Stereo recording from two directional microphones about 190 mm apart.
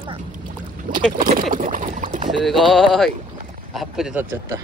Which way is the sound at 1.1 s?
40° right (ahead or behind).